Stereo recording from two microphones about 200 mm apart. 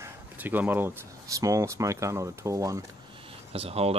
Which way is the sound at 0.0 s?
10° right (ahead or behind).